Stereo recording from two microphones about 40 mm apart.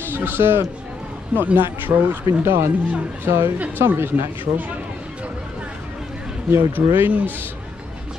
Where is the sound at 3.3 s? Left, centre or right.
Right.